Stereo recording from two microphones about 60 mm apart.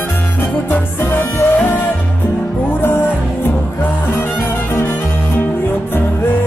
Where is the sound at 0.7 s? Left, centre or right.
Left.